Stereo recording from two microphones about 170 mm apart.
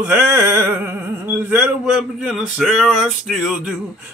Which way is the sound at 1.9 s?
Centre (ahead or behind).